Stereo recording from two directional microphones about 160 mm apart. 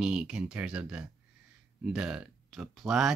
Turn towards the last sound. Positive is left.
turn(degrees=0)  # may be behind; listen again after turning